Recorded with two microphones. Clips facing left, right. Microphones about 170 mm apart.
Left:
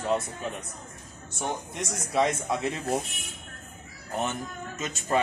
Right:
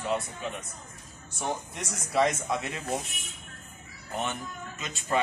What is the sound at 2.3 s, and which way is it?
Speech, 35° left (ahead or behind).